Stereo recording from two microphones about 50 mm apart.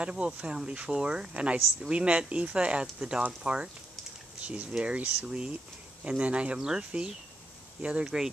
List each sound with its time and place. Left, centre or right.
0.0 s speech: right